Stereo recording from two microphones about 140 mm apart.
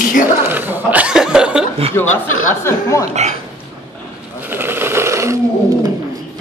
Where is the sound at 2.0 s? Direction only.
15° left (ahead or behind).